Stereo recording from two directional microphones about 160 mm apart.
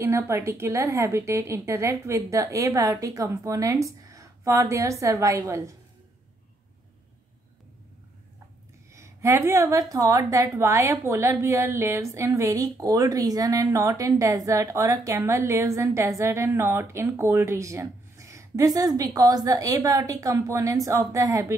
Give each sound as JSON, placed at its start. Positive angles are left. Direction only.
{"t": 0.0, "sound": "a woman's voice", "side_deg": -15}
{"t": 8.9, "sound": "a woman's voice", "side_deg": -15}